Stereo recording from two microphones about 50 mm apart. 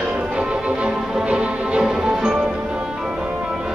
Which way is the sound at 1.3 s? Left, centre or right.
Centre.